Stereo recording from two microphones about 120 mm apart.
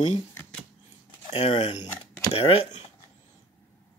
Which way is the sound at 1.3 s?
60° left (ahead or behind).